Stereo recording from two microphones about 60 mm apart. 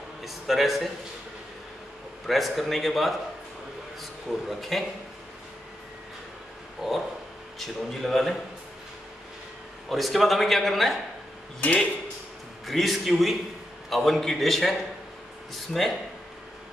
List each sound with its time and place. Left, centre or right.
0.2 s a man's voice: centre
2.2 s a man's voice: centre
4.5 s a man's voice: centre
6.8 s a man's voice: centre
9.8 s a man's voice: centre
11.6 s speech: left
12.6 s a man's voice: centre